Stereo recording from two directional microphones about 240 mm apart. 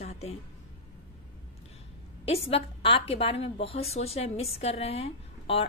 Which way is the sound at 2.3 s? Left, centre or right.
Left.